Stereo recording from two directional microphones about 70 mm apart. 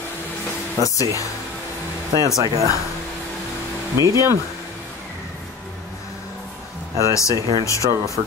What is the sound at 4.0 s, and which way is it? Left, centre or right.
Speech, right.